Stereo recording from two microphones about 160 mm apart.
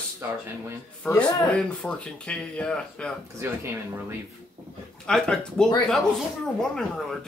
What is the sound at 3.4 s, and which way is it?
Speech, 15° right (ahead or behind).